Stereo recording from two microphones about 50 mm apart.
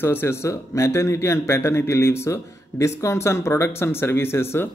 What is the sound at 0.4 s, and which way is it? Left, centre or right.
A man's voice, left.